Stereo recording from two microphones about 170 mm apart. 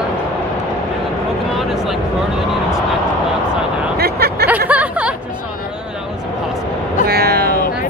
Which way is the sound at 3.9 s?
70° right (ahead or behind).